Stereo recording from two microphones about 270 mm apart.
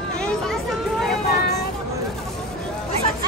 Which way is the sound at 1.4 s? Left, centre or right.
Left.